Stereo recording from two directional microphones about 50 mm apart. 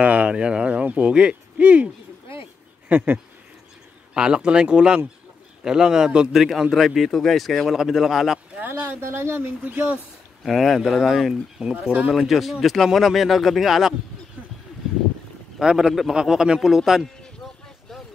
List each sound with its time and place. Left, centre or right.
0.0 s speech: right
2.9 s speech: right
4.1 s a man's voice: centre
6.3 s speech: centre
9.0 s speech: right
9.6 s speech: right
10.4 s speech: centre
15.6 s a man's voice: centre